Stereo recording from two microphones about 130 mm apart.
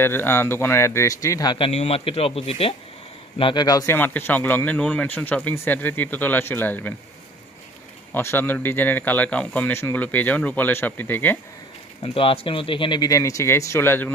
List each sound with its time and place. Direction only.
0.0 s speech: 15° left (ahead or behind); by 1.7 s 35° left (ahead or behind)
1.7 s a man's voice: 50° left (ahead or behind)
3.6 s speech: 30° left (ahead or behind)
3.9 s a man's voice: 15° left (ahead or behind)
8.1 s a man's voice: 15° left (ahead or behind)
12.0 s speech: 45° left (ahead or behind); by 14.1 s 15° left (ahead or behind)